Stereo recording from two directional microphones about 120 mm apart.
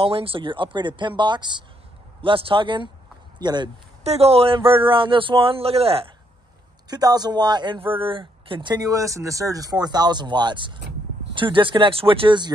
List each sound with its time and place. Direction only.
0.0 s speech: 50° right (ahead or behind)
4.0 s speech: 60° right (ahead or behind)
6.9 s speech: 35° right (ahead or behind)